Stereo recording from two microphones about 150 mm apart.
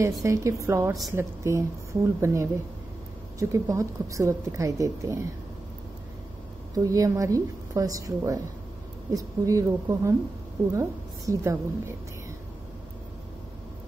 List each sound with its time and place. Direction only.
0.2 s a woman's voice: 20° right (ahead or behind)
6.7 s a woman's voice: 25° right (ahead or behind)